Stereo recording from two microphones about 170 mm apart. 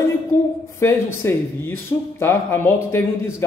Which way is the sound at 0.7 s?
15° left (ahead or behind).